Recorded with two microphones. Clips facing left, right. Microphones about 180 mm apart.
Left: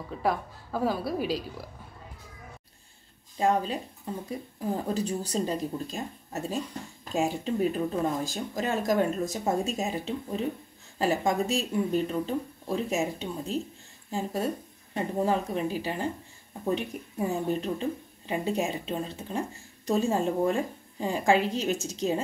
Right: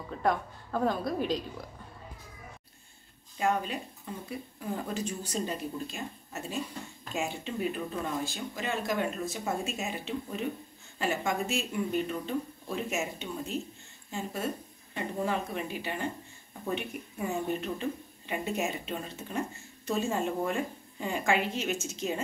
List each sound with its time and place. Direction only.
0.1 s a woman's voice: 5° left (ahead or behind)
3.3 s speech: 30° left (ahead or behind)